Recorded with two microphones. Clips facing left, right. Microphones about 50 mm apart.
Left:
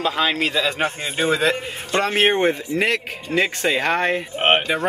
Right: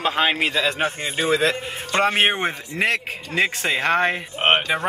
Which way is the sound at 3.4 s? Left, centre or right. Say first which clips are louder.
Left 1 dB; right.